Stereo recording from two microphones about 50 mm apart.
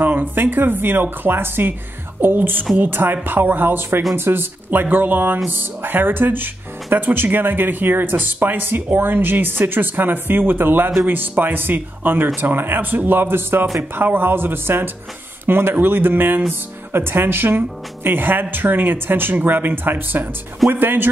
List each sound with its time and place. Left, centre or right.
0.0 s speech: right